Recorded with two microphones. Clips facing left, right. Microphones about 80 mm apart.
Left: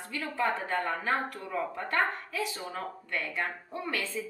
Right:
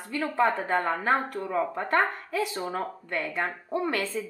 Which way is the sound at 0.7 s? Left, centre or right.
Right.